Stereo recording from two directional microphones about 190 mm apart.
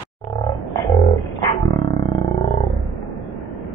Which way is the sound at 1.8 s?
30° left (ahead or behind).